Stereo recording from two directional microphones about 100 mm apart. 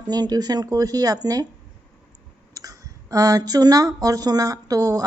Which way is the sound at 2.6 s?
35° right (ahead or behind).